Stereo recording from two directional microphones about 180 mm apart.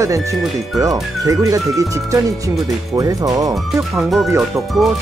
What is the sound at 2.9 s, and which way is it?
Speech, 20° right (ahead or behind).